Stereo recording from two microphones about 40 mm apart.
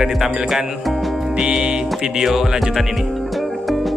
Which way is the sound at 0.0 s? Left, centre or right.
Centre.